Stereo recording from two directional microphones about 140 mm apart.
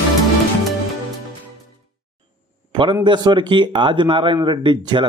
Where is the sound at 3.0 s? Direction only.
35° right (ahead or behind).